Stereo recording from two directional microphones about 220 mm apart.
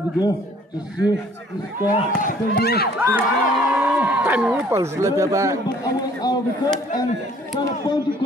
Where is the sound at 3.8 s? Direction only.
5° right (ahead or behind).